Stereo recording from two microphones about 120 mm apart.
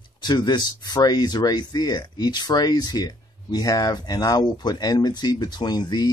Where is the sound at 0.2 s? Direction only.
40° left (ahead or behind).